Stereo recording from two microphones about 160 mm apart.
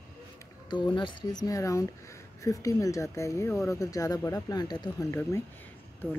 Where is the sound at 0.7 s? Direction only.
30° left (ahead or behind).